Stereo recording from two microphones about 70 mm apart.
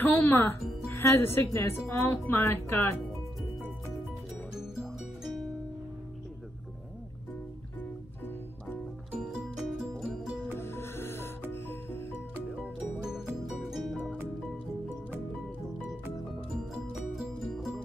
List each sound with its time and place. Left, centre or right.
0.0 s speech: left
4.6 s music: centre
9.2 s music: centre
10.6 s music: left
12.7 s music: centre
16.7 s music: centre